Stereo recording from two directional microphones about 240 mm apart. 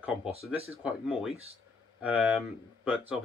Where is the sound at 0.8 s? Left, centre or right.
Centre.